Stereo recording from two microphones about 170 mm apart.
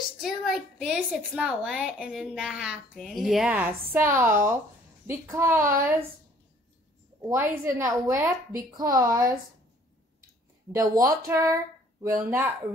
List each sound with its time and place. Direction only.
0.2 s a woman's voice: centre (ahead or behind)
7.2 s a woman's voice: 20° right (ahead or behind)
10.7 s a woman's voice: 20° right (ahead or behind)